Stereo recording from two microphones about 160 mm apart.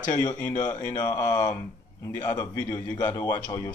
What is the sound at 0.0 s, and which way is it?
Speech, 15° left (ahead or behind).